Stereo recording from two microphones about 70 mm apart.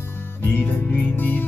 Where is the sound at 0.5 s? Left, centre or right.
Left.